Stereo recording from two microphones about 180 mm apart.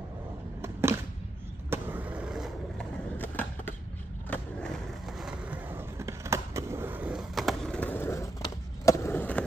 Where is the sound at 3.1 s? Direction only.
10° left (ahead or behind).